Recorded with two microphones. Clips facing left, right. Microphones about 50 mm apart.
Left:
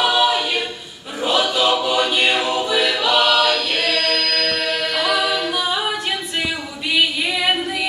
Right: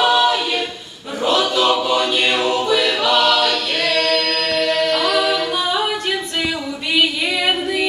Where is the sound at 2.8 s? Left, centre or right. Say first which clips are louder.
Right 1 dB; left.